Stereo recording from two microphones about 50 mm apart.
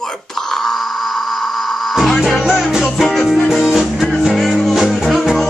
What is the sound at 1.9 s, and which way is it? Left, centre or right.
Music, centre.